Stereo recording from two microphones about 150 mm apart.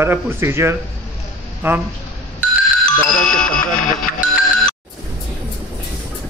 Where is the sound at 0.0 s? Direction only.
15° right (ahead or behind).